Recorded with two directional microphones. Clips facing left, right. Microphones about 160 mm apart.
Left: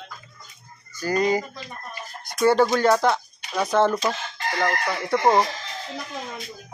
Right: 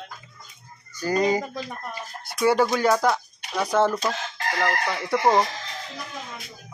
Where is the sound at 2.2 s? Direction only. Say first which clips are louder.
Left 2 dB; 5° right (ahead or behind).